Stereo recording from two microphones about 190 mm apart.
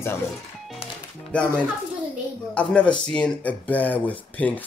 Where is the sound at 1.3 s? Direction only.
5° left (ahead or behind).